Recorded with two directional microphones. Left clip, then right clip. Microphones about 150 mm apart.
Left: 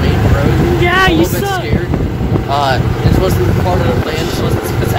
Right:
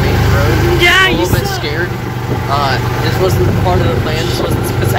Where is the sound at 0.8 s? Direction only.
30° left (ahead or behind).